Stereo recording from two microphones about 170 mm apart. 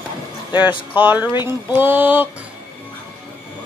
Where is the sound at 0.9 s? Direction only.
10° right (ahead or behind).